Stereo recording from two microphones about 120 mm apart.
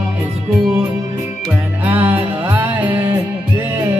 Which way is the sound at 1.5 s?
15° right (ahead or behind).